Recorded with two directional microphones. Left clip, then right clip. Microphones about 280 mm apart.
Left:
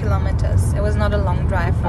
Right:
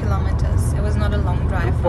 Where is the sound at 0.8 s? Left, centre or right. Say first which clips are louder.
Left 6 dB; centre.